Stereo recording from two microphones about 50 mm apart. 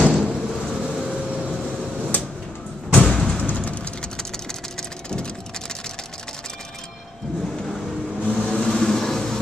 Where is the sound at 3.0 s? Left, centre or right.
Centre.